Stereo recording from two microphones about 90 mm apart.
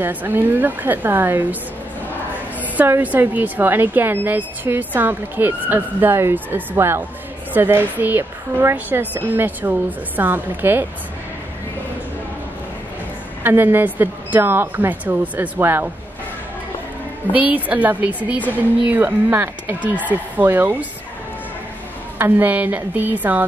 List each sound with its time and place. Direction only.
0.0 s a woman's voice: 20° right (ahead or behind)
2.8 s a woman's voice: 20° right (ahead or behind)
13.4 s a woman's voice: 25° right (ahead or behind)
17.3 s a woman's voice: 20° right (ahead or behind)
22.2 s a woman's voice: 20° right (ahead or behind)